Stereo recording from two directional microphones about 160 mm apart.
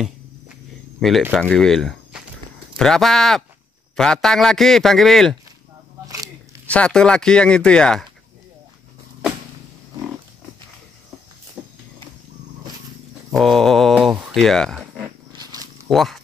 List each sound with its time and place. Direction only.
1.0 s speech: centre (ahead or behind)
6.0 s biting: 25° right (ahead or behind)
6.7 s speech: 5° left (ahead or behind)
11.6 s walk: centre (ahead or behind)
13.3 s speech: centre (ahead or behind)
15.3 s purr: 25° right (ahead or behind)
15.9 s speech: centre (ahead or behind)